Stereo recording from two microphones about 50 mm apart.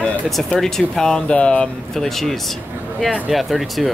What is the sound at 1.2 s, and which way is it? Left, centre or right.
Speech, left.